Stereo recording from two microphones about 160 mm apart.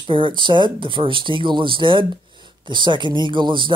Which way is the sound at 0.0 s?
30° right (ahead or behind).